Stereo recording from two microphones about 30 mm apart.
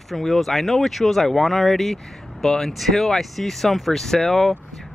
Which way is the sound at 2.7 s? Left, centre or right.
Centre.